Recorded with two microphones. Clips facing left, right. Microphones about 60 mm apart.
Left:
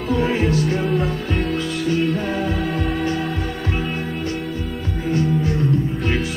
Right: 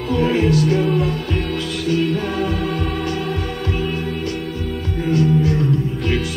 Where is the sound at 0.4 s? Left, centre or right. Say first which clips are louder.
Right 3 dB; left.